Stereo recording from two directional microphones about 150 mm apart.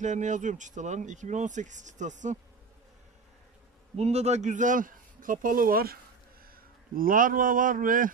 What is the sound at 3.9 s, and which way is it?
Speech, 45° right (ahead or behind).